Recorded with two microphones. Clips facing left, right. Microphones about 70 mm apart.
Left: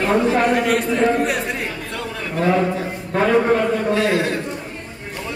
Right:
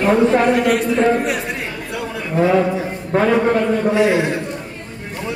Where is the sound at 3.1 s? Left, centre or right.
Right.